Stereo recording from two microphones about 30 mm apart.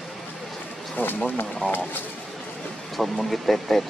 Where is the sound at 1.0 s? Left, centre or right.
Left.